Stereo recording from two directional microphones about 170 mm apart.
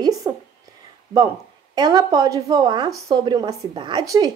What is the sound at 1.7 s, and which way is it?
A woman's voice, 25° right (ahead or behind).